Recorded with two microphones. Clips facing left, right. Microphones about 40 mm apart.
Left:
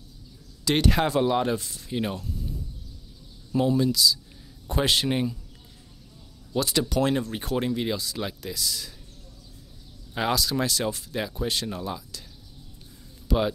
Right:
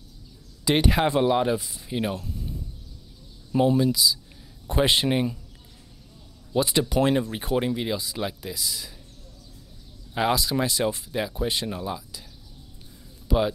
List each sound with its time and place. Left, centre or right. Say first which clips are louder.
0.7 s speech: right 1 dB; centre
3.5 s a man's voice: right 2 dB; centre
6.5 s speech: right 2 dB; centre
10.3 s speech: right 1 dB; centre
11.1 s speech: even; centre
13.3 s speech: right 1 dB; centre